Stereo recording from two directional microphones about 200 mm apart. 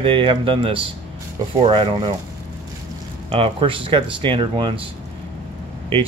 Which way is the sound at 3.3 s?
25° right (ahead or behind).